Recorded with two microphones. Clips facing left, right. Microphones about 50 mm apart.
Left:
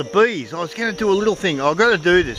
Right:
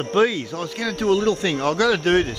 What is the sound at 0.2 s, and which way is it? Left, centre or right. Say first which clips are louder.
Speech: left 3 dB; left.